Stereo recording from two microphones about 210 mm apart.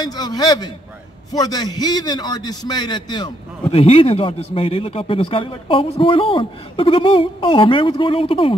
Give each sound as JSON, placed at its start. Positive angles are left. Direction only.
{"t": 0.0, "sound": "a man's voice", "side_deg": 20}